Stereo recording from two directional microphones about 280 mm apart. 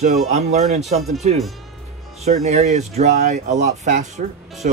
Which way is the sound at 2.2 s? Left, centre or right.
Right.